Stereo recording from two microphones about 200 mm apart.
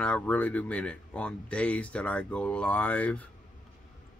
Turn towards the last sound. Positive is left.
turn(degrees=5)  # may be behind; listen again after turning